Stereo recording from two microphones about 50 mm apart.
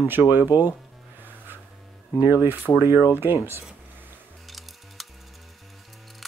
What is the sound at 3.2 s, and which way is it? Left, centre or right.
Speech, right.